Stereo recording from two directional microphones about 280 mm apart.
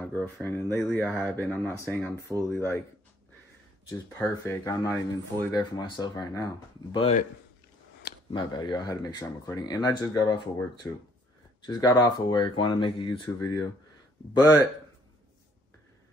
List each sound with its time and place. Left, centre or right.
0.0 s speech: centre
3.9 s speech: centre
8.3 s speech: centre
11.6 s speech: centre